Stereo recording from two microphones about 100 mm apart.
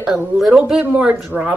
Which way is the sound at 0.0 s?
10° right (ahead or behind).